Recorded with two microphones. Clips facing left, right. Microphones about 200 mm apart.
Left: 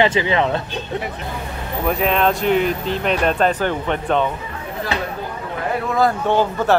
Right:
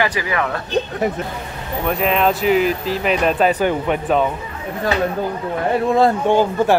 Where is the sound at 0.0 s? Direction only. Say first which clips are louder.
Left 4 dB; 25° left (ahead or behind).